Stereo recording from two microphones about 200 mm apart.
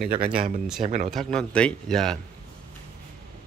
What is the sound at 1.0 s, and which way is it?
A man's voice, centre (ahead or behind).